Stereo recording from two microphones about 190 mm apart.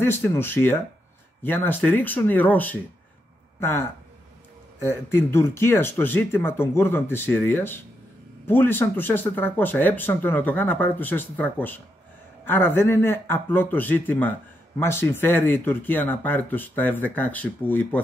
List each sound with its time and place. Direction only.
0.0 s speech: 10° left (ahead or behind)
4.7 s speech: 15° left (ahead or behind)